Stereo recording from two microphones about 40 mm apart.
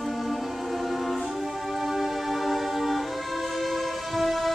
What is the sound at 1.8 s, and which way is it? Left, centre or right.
Music, centre.